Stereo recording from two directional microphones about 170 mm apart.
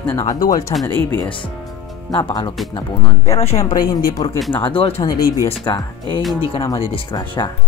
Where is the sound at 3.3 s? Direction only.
35° left (ahead or behind).